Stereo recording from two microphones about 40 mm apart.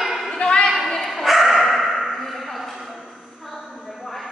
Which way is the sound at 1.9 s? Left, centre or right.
Centre.